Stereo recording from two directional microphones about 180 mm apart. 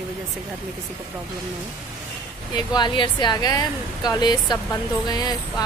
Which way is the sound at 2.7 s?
25° left (ahead or behind).